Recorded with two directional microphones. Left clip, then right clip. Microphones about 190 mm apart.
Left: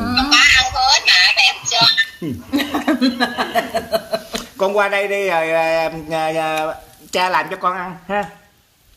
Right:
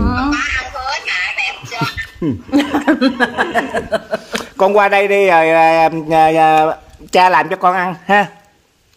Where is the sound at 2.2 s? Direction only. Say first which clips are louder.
Right 6 dB; 55° right (ahead or behind).